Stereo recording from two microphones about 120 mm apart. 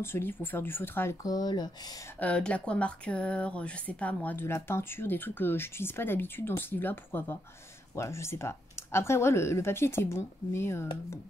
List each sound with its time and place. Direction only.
0.0 s speech: 20° left (ahead or behind)
1.2 s speech: 35° left (ahead or behind)
2.1 s speech: 10° left (ahead or behind)